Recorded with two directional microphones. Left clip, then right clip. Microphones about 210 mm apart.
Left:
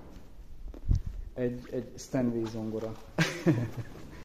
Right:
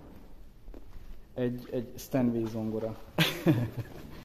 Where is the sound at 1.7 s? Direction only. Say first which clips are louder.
Right 1 dB; 20° right (ahead or behind).